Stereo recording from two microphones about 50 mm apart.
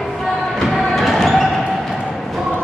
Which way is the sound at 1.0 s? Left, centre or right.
Centre.